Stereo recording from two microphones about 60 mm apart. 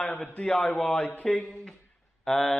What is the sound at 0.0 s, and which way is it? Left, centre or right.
A man's voice, left.